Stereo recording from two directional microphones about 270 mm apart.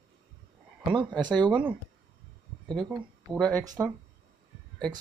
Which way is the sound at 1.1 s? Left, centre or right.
Centre.